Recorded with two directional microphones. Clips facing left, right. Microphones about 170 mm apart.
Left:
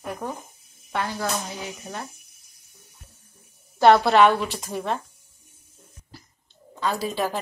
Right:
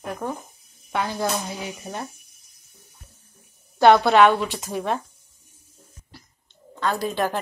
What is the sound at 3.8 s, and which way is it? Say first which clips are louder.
A woman's voice: right 1 dB; centre (ahead or behind).